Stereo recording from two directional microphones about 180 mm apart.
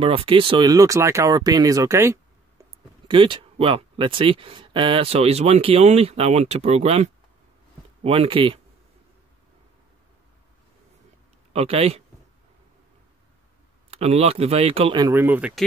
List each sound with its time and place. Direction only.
0.0 s speech: 30° right (ahead or behind); by 2.1 s 15° right (ahead or behind)
3.1 s speech: 30° right (ahead or behind)
11.5 s speech: 35° right (ahead or behind)
13.8 s speech: 35° right (ahead or behind)
15.2 s speech: 10° right (ahead or behind)